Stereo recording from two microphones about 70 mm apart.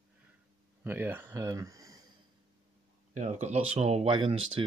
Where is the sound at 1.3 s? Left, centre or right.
Right.